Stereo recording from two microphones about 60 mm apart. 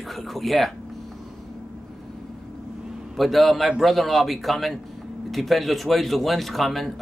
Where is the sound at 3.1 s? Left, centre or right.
Centre.